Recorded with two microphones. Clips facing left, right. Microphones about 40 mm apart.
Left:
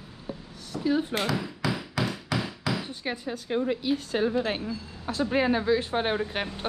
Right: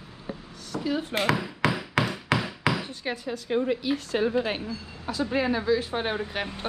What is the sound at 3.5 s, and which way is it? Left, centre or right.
Speech, right.